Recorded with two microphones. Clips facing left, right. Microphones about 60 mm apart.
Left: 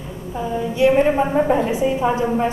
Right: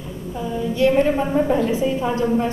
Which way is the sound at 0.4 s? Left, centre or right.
Left.